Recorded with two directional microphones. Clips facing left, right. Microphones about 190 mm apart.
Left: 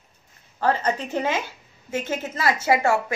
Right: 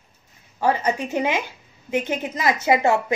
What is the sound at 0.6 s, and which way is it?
A woman's voice, 10° right (ahead or behind).